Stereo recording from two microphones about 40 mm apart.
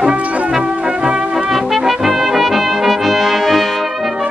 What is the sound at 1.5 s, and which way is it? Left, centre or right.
Brass instrument, centre.